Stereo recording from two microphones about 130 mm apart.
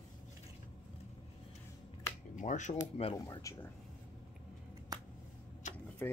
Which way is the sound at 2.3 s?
75° left (ahead or behind).